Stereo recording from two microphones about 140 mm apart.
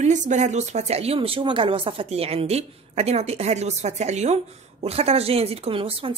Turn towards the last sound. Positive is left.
turn(degrees=-40)  # may be behind; listen again after turning